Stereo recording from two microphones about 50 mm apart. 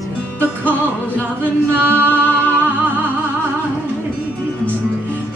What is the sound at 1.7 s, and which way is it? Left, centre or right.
Music, right.